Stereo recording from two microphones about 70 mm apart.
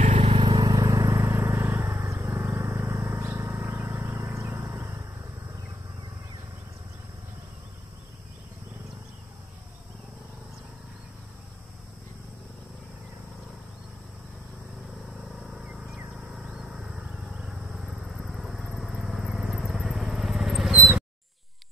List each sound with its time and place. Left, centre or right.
0.5 s vehicle: right
15.0 s vehicle: centre
15.6 s a sound: centre
16.2 s vehicle: centre